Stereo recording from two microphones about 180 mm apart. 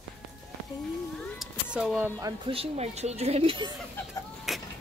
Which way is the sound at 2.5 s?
35° right (ahead or behind).